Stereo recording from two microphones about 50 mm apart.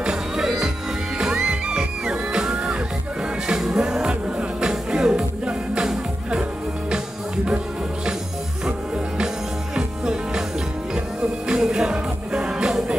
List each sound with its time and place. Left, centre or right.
0.0 s music: centre
7.4 s music: centre
11.4 s music: centre